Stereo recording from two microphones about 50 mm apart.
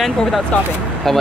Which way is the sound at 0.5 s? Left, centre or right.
Left.